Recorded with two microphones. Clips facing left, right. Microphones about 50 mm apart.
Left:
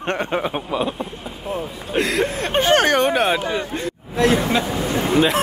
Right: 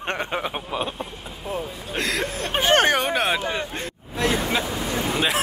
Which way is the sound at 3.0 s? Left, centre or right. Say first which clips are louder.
Left 5 dB; centre.